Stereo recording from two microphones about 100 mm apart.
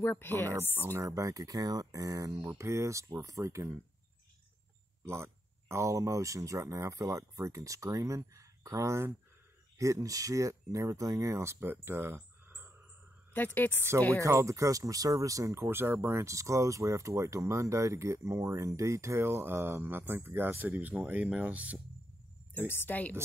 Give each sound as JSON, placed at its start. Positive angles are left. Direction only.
{"t": 0.0, "sound": "speech", "side_deg": 20}
{"t": 0.9, "sound": "speech", "side_deg": -35}
{"t": 5.0, "sound": "speech", "side_deg": -25}
{"t": 13.3, "sound": "speech", "side_deg": 15}
{"t": 14.2, "sound": "speech", "side_deg": -30}
{"t": 22.5, "sound": "speech", "side_deg": 20}